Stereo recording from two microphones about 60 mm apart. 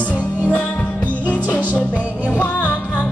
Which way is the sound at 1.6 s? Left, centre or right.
Right.